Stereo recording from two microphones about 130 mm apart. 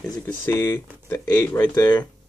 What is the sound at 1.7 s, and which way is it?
Speech, 25° left (ahead or behind).